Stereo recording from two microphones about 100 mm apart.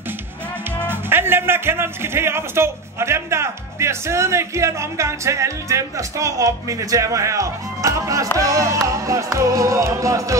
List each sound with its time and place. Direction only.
0.8 s speech: 20° right (ahead or behind)
8.4 s music: 30° right (ahead or behind)